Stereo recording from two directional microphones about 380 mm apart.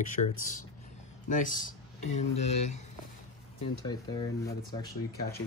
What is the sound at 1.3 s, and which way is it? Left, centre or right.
Speech, centre.